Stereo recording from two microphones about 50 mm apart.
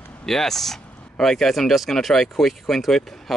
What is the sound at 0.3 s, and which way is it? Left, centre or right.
Speech, centre.